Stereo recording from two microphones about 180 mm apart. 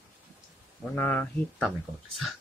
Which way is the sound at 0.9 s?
10° left (ahead or behind).